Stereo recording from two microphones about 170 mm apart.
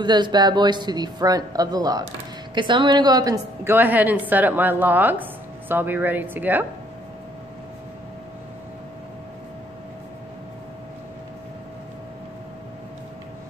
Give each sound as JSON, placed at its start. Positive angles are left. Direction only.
{"t": 0.0, "sound": "a woman's voice", "side_deg": -25}